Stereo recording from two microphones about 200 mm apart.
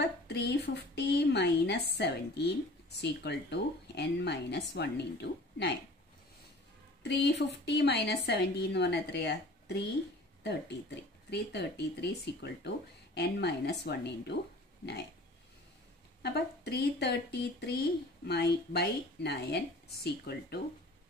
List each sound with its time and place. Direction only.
0.0 s speech: 55° left (ahead or behind)
7.0 s speech: 55° left (ahead or behind)
16.2 s speech: 55° left (ahead or behind)